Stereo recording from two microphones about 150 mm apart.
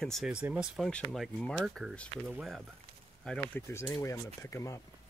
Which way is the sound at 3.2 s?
10° left (ahead or behind).